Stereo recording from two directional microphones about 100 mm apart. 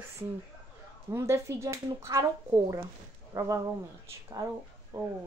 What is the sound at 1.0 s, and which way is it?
Speech, 30° right (ahead or behind).